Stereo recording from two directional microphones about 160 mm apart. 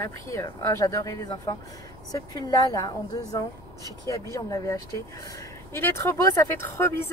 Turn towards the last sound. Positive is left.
turn(degrees=15)  # may be behind; listen again after turning